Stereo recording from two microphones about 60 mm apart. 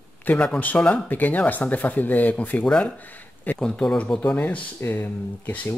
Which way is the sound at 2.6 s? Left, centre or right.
Centre.